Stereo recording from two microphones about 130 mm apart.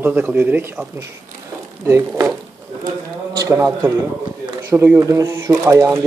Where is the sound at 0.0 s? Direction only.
15° right (ahead or behind).